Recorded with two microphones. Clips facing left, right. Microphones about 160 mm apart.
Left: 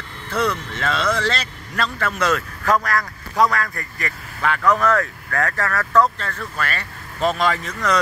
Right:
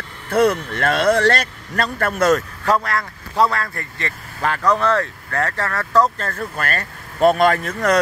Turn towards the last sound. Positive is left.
turn(degrees=-50)  # may be behind; listen again after turning